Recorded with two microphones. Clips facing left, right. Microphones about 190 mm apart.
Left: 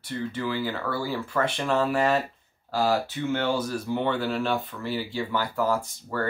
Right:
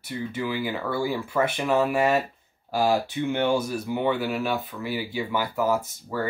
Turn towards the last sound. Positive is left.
turn(degrees=-10)  # may be behind; listen again after turning